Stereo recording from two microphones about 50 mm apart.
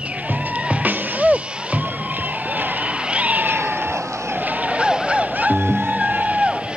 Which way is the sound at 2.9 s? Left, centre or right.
Right.